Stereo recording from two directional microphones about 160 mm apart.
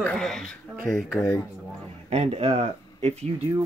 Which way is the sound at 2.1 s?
40° right (ahead or behind).